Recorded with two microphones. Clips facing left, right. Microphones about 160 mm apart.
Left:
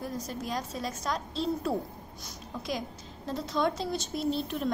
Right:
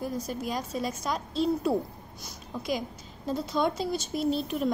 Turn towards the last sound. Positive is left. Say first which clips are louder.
# right 3 dB
turn(degrees=0)  # may be behind; listen again after turning